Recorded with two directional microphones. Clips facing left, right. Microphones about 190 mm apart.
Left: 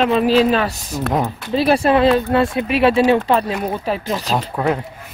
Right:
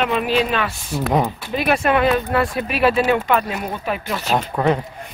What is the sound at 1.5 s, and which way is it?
Speech, 30° left (ahead or behind).